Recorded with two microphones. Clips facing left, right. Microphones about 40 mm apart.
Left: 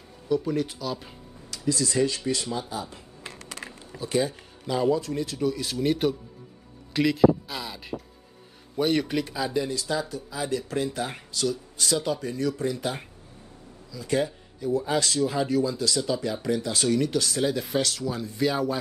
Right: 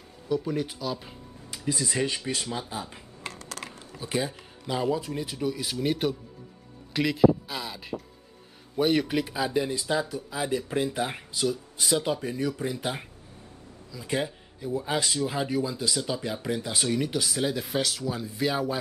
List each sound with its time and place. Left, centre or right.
0.3 s speech: centre
1.5 s speech: right
4.0 s a man's voice: centre